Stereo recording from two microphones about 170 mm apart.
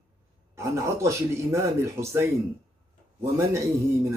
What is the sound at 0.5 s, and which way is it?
Speech, 15° right (ahead or behind).